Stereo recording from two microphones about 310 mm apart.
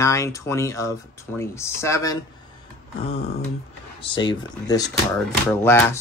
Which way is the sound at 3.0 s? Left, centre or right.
Centre.